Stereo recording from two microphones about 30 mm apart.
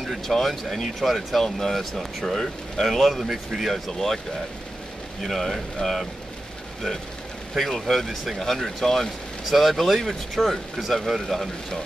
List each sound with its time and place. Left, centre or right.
0.0 s speech: centre
1.4 s speech: centre
5.2 s speech: centre
7.6 s speech: centre
8.8 s speech: centre
9.5 s speech: centre